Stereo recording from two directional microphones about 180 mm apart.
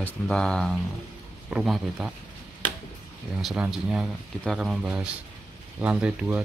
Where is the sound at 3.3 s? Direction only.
5° right (ahead or behind).